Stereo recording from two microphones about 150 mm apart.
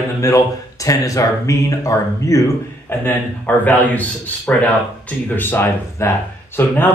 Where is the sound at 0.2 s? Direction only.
20° left (ahead or behind).